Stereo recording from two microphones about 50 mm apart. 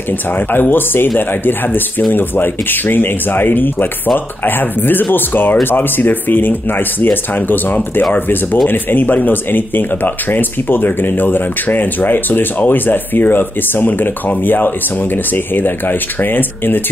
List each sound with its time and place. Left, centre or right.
0.5 s speech: left